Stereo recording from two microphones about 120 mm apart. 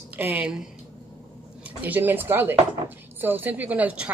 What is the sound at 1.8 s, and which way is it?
A woman's voice, 15° right (ahead or behind).